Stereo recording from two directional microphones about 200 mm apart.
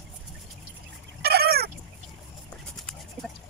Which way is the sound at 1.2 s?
50° right (ahead or behind).